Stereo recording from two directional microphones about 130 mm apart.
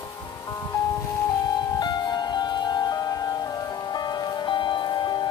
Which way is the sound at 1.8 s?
30° left (ahead or behind).